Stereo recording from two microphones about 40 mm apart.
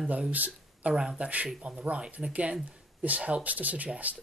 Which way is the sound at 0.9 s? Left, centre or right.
Centre.